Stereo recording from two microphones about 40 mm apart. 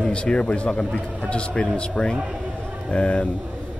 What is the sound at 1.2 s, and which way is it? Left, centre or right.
A man's voice, left.